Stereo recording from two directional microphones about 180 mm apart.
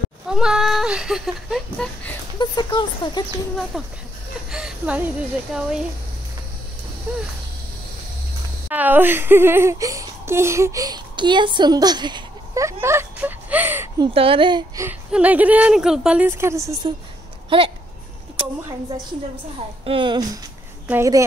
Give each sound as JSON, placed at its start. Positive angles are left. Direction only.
{"t": 0.3, "sound": "a sound", "side_deg": -5}
{"t": 2.3, "sound": "a sound", "side_deg": 25}
{"t": 3.7, "sound": "speech", "side_deg": 0}
{"t": 7.1, "sound": "a woman's voice", "side_deg": -10}
{"t": 8.6, "sound": "speech", "side_deg": -10}
{"t": 12.8, "sound": "a sound", "side_deg": -10}
{"t": 13.9, "sound": "speech", "side_deg": -30}
{"t": 14.8, "sound": "a woman's voice", "side_deg": -10}
{"t": 19.8, "sound": "speech", "side_deg": -30}
{"t": 20.8, "sound": "speech", "side_deg": -15}